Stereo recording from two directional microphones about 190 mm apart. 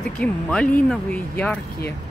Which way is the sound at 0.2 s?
5° left (ahead or behind).